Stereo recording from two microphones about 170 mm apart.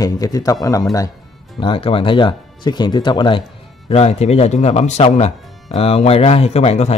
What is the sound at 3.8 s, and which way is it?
Speech, 40° left (ahead or behind).